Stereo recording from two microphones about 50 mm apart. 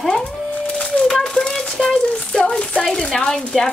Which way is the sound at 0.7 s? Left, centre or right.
Centre.